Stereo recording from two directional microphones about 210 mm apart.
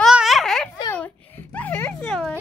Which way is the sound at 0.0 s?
Centre (ahead or behind).